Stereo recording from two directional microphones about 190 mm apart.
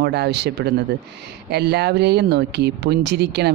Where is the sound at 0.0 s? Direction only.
60° right (ahead or behind).